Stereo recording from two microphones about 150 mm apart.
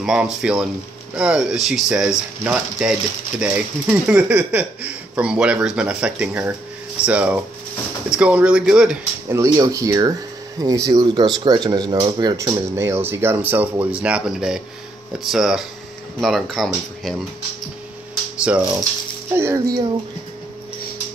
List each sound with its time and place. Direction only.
0.0 s speech: 5° right (ahead or behind)
9.3 s speech: 20° right (ahead or behind); by 17.1 s centre (ahead or behind)
18.5 s speech: 10° right (ahead or behind)